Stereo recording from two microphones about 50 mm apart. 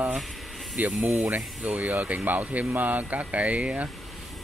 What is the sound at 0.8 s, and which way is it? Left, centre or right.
Speech, right.